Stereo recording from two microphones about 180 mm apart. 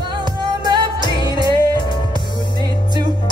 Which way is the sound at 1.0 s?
25° left (ahead or behind).